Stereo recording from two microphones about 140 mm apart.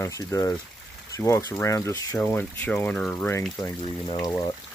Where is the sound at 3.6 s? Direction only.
25° left (ahead or behind).